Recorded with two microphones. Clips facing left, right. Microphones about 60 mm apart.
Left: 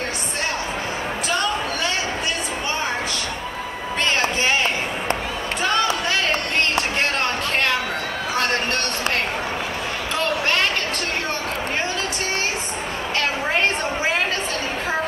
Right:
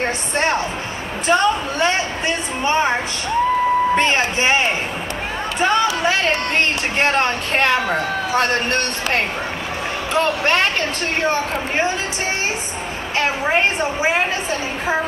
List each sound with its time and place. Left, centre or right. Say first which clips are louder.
0.0 s a sound: right 6 dB; right
2.6 s a woman's voice: right 9 dB; right; by 9.2 s centre
10.2 s speech: right 2 dB; centre
13.2 s a woman's voice: right 4 dB; centre